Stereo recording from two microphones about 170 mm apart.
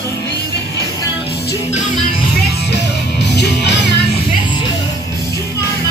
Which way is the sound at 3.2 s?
90° left.